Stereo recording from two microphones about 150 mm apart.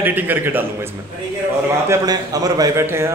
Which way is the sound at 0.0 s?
10° right (ahead or behind).